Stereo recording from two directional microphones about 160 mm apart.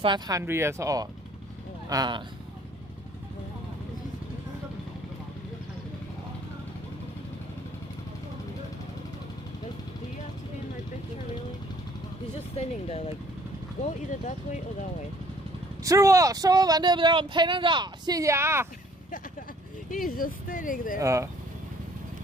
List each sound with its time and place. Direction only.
0.0 s speech: 30° right (ahead or behind)
0.4 s speech: 15° right (ahead or behind)
12.5 s speech: 40° left (ahead or behind)
15.8 s speech: 20° right (ahead or behind)
19.9 s speech: 60° left (ahead or behind)
21.0 s speech: 20° right (ahead or behind)